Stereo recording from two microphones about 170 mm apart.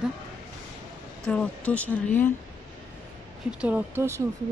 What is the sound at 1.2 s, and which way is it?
A woman's voice, 5° left (ahead or behind).